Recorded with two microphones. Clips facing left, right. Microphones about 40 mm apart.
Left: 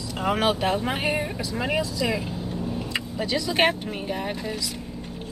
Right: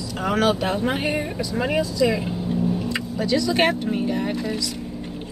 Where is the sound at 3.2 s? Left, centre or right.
Centre.